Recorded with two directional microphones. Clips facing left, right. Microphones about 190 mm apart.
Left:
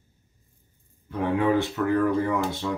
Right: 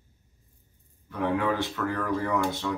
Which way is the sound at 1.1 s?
25° left (ahead or behind).